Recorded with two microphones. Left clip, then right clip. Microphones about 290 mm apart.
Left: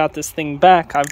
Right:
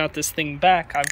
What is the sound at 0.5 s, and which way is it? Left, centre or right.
Speech, left.